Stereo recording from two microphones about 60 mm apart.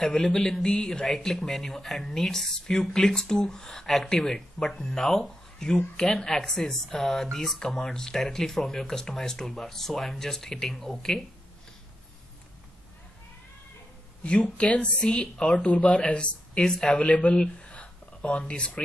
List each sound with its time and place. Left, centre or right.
0.0 s a woman's voice: centre
14.2 s speech: left
16.9 s speech: left